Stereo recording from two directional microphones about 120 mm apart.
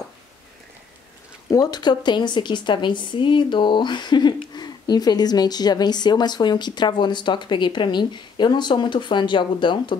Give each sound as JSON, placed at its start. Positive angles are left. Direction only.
{"t": 1.5, "sound": "speech", "side_deg": 35}